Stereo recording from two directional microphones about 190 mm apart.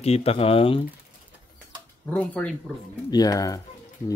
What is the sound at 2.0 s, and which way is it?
Speech, 5° left (ahead or behind).